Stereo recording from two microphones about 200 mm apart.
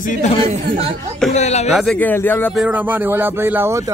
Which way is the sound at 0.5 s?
30° right (ahead or behind).